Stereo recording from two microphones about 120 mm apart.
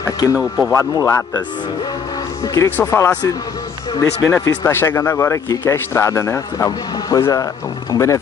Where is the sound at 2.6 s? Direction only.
20° left (ahead or behind).